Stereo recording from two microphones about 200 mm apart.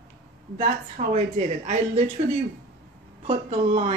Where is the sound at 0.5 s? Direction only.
35° right (ahead or behind).